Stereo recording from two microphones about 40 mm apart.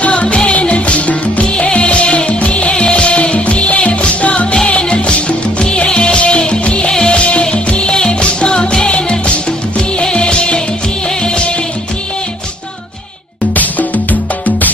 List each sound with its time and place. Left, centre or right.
0.0 s music: left
6.9 s music: centre
7.2 s music: left
13.6 s music: left